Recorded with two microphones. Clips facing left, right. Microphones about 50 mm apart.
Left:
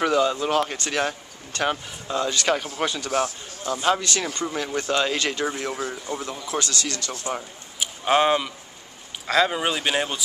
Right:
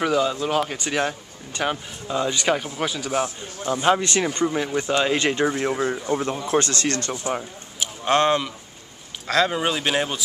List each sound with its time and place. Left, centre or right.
0.0 s speech: centre
2.1 s speech: centre
2.8 s speech: centre
3.1 s speech: right
4.5 s speech: centre; by 7.1 s right
7.8 s speech: centre